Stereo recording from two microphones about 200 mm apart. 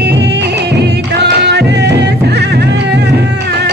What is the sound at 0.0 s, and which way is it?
Music, 60° right (ahead or behind).